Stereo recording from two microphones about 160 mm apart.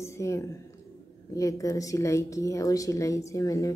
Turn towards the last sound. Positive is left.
turn(degrees=20)  # may be behind; listen again after turning